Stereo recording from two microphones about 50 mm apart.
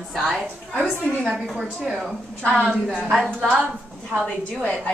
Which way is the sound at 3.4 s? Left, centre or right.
Right.